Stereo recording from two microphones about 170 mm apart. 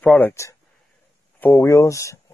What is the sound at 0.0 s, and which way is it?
Speech, 5° left (ahead or behind).